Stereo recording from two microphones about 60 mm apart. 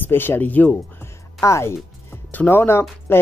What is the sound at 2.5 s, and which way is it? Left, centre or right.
Speech, left.